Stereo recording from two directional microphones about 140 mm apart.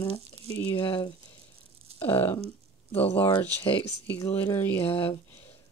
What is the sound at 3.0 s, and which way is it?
Speech, 45° left (ahead or behind).